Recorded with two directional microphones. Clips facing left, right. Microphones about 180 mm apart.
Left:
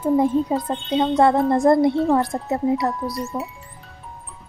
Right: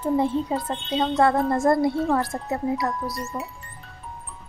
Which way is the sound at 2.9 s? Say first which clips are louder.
Left 4 dB; centre (ahead or behind).